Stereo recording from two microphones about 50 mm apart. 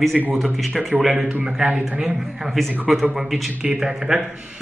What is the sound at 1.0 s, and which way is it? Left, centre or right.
Speech, centre.